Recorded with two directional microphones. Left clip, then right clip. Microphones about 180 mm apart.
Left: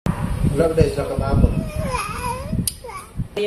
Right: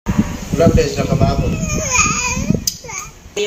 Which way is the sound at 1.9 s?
15° left (ahead or behind).